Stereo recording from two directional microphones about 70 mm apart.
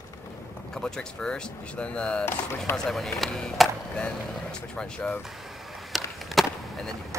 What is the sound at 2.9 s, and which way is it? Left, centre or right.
Speech, centre.